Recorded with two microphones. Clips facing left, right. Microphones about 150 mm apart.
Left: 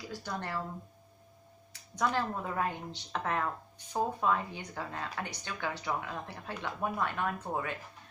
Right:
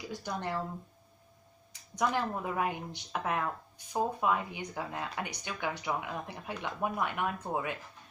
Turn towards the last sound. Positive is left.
turn(degrees=-15)  # may be behind; listen again after turning